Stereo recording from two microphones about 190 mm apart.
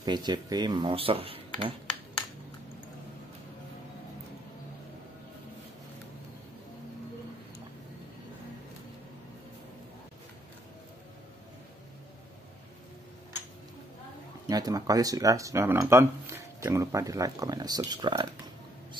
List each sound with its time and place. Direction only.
0.0 s speech: 20° right (ahead or behind)
14.5 s speech: 20° right (ahead or behind)